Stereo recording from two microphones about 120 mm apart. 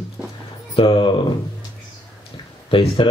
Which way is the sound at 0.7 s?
45° left (ahead or behind).